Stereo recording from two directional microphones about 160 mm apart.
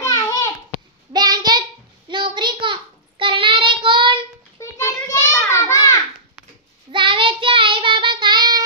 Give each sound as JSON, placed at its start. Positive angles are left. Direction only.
{"t": 0.0, "sound": "a sound", "side_deg": 20}
{"t": 1.1, "sound": "child singing", "side_deg": -25}
{"t": 4.6, "sound": "children playing", "side_deg": 20}
{"t": 6.9, "sound": "child singing", "side_deg": -30}